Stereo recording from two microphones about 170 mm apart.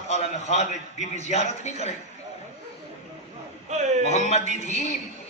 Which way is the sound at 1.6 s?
40° left (ahead or behind).